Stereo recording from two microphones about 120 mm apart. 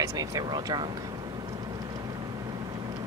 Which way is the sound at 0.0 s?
30° right (ahead or behind).